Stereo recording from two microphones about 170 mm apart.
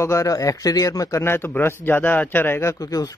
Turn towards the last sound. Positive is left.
turn(degrees=20)  # may be behind; listen again after turning